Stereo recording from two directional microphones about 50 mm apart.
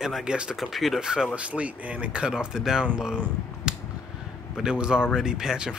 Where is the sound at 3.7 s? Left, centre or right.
Centre.